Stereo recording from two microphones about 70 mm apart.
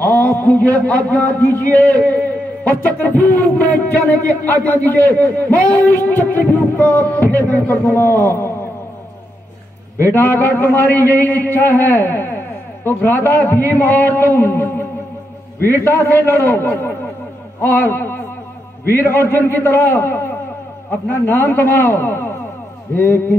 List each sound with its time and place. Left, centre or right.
0.0 s a man's voice: left
9.9 s a man's voice: left